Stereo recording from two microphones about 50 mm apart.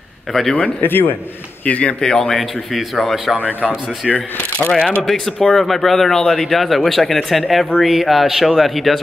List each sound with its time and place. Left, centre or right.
0.3 s speech: centre
0.8 s a man's voice: left
1.7 s speech: left
2.0 s speech: centre
3.3 s a man's voice: right
4.6 s speech: centre